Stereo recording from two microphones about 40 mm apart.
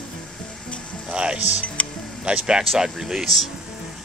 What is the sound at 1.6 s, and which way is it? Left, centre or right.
Music, left.